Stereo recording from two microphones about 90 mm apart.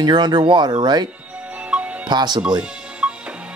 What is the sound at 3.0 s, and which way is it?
Music, 10° right (ahead or behind).